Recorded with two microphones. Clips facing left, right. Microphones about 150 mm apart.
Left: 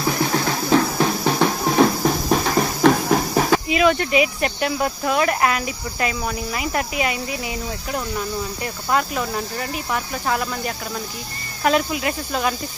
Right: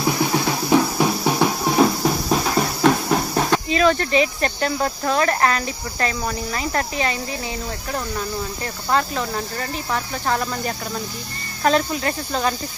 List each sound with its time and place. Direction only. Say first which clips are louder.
0.2 s music: right 1 dB; 15° right (ahead or behind); by 7.2 s 10° left (ahead or behind)
8.9 s speech: even; 10° left (ahead or behind)